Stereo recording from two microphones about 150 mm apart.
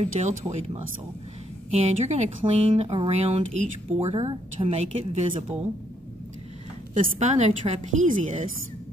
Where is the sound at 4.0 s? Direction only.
40° right (ahead or behind).